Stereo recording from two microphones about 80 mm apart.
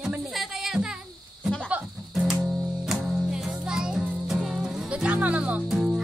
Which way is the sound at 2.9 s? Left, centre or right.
Centre.